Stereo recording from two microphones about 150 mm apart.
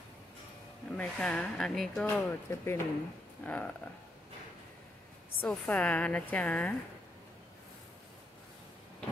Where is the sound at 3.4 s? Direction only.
10° left (ahead or behind).